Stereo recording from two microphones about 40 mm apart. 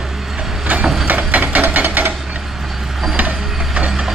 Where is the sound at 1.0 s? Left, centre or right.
Right.